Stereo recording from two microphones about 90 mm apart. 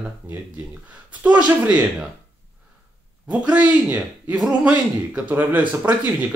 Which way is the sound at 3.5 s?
15° right (ahead or behind).